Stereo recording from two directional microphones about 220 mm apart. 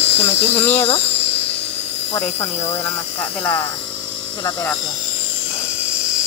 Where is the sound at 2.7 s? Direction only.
10° left (ahead or behind).